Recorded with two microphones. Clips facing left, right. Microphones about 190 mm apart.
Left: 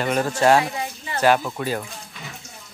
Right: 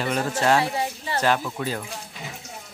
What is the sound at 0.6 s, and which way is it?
Speech, 30° right (ahead or behind).